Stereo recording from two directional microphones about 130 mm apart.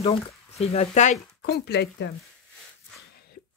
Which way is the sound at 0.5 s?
60° left (ahead or behind).